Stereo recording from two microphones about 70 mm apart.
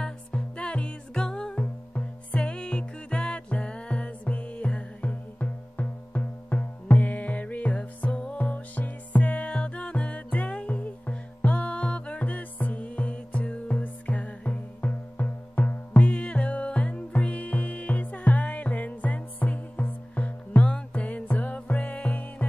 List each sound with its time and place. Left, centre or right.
0.0 s music: centre